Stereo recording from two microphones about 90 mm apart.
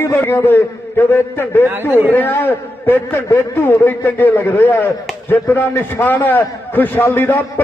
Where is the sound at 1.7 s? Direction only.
25° right (ahead or behind).